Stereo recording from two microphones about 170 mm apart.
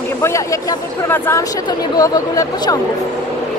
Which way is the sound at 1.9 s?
20° left (ahead or behind).